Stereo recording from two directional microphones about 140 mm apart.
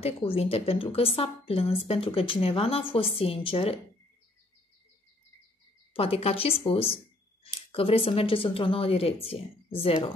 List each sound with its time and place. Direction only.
0.0 s a woman's voice: 45° left (ahead or behind)
5.9 s a woman's voice: 45° left (ahead or behind)